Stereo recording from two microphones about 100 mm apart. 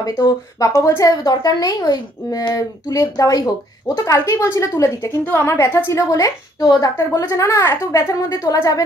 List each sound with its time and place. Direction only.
0.0 s a woman's voice: 40° left (ahead or behind); by 5.9 s 20° left (ahead or behind)
5.9 s a woman's voice: 35° left (ahead or behind)